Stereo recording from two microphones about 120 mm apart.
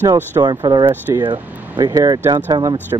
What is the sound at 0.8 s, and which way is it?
Speech, 20° right (ahead or behind).